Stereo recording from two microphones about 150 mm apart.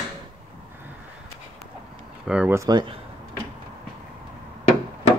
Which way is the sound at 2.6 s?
30° right (ahead or behind).